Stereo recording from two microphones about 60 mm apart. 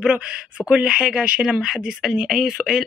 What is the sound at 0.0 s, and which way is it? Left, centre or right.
Speech, centre.